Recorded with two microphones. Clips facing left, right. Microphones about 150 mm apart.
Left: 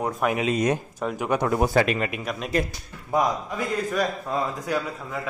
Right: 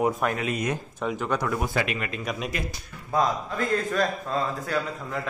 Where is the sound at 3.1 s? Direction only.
10° left (ahead or behind).